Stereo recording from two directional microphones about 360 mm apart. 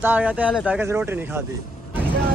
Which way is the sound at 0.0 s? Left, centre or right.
Centre.